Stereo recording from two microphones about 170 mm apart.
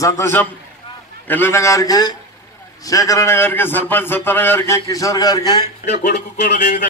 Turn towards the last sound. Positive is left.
turn(degrees=45)  # may be behind; listen again after turning